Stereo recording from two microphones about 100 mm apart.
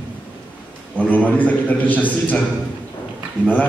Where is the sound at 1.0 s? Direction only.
15° left (ahead or behind).